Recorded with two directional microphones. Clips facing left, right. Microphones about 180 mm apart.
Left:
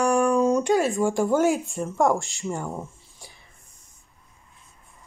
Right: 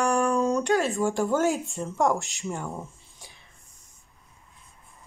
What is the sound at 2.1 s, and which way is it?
Speech, 20° right (ahead or behind).